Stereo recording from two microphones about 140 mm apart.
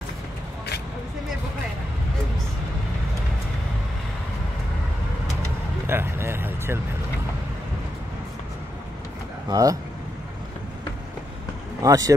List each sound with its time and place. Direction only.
5.9 s a sound: 15° right (ahead or behind)
9.5 s speech: 25° right (ahead or behind)
11.8 s speech: 25° right (ahead or behind)